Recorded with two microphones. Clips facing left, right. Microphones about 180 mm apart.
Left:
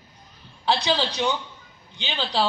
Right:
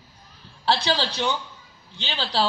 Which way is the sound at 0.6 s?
15° left (ahead or behind).